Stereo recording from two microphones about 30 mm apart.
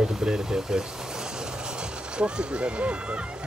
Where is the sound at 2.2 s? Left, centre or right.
Right.